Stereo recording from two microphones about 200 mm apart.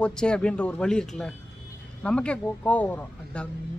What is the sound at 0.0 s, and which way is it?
A man's voice, 5° left (ahead or behind).